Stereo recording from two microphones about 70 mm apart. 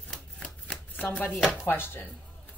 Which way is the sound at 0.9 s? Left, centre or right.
Left.